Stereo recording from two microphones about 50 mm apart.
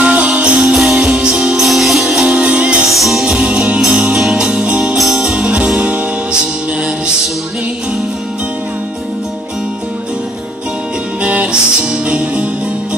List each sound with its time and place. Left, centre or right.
0.0 s music: right
0.6 s music: centre
2.1 s music: centre
2.4 s music: right
2.8 s music: centre
4.6 s music: right
4.9 s music: centre
5.3 s music: centre
11.9 s music: right